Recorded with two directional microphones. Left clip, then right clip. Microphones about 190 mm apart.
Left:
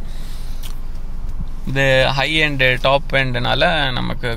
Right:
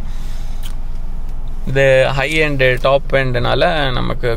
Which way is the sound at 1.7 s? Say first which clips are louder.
Right 3 dB; centre (ahead or behind).